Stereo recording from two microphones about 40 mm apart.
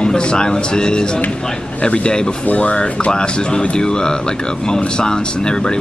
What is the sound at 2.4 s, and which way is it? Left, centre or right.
Speech, left.